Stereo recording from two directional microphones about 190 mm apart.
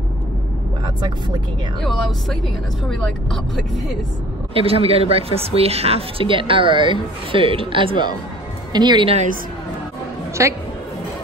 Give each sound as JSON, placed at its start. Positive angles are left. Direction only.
{"t": 1.8, "sound": "speech", "side_deg": 0}
{"t": 4.6, "sound": "speech", "side_deg": -30}
{"t": 10.4, "sound": "a woman's voice", "side_deg": -15}